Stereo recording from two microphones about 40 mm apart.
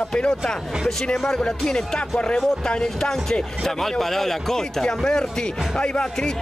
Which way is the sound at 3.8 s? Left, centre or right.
Centre.